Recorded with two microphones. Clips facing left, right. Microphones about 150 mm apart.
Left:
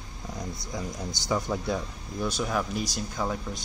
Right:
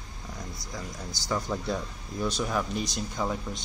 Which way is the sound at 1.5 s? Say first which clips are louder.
Left 1 dB; 5° left (ahead or behind).